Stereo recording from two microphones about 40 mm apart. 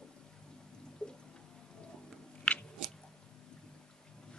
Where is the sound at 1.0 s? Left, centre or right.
Left.